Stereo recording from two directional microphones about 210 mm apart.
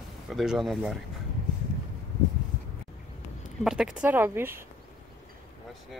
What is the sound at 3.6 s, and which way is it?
Speech, 5° right (ahead or behind).